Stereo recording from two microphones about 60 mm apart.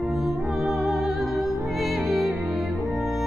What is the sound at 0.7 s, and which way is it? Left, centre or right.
Music, centre.